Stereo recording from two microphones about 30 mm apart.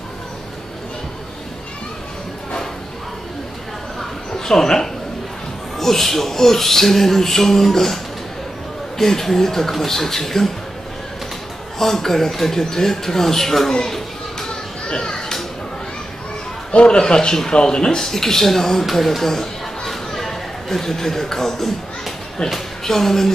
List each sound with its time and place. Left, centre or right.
4.0 s a sound: centre
5.8 s speech: centre
11.8 s speech: centre
13.8 s children playing: centre
14.9 s music: left
16.7 s a man's voice: left
17.0 s speech: left
18.0 s speech: centre
18.9 s chatter: centre
22.5 s speech: centre